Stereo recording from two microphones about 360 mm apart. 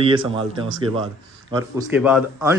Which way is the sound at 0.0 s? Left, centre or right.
Centre.